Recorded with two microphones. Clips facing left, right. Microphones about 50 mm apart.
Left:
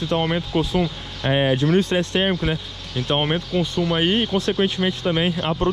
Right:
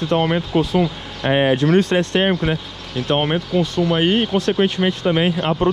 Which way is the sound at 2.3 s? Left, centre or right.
Right.